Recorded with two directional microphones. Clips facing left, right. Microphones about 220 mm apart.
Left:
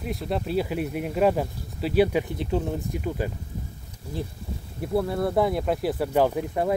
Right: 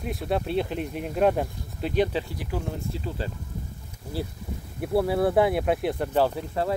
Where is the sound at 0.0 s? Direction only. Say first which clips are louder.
Right 1 dB; centre (ahead or behind).